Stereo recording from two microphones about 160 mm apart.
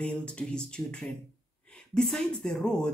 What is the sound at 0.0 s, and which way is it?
Speech, 5° left (ahead or behind).